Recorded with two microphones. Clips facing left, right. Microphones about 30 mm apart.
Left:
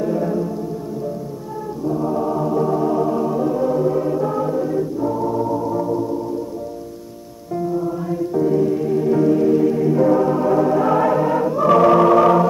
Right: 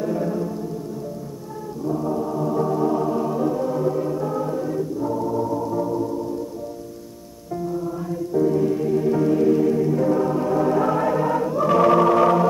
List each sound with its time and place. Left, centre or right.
0.0 s music: centre
1.9 s choir: centre
2.1 s music: left
2.4 s organ: centre
7.5 s music: centre
8.4 s music: centre
10.9 s choir: centre